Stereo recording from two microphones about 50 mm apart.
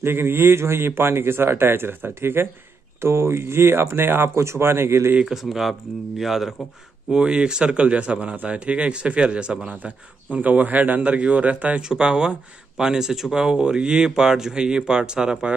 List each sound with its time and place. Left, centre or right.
0.0 s a man's voice: right
3.0 s speech: right
4.4 s speech: right
5.2 s speech: centre
7.1 s speech: centre
11.9 s speech: centre